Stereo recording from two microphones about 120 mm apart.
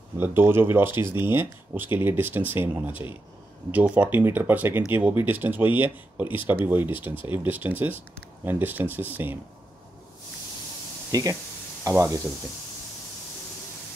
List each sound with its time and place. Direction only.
0.2 s speech: 20° right (ahead or behind)
11.1 s speech: 30° right (ahead or behind)